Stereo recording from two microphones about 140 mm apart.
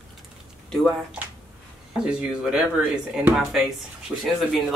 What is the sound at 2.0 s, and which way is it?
Speech, 5° right (ahead or behind).